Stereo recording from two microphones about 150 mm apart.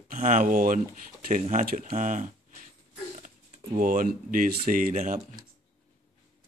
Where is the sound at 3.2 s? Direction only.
60° right (ahead or behind).